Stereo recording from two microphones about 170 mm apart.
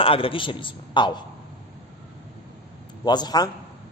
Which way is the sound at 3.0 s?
25° left (ahead or behind).